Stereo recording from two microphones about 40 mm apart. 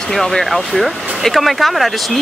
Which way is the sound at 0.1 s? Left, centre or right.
Centre.